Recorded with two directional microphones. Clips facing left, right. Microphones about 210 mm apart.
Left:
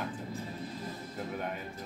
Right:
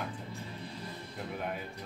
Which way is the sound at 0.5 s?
45° left (ahead or behind).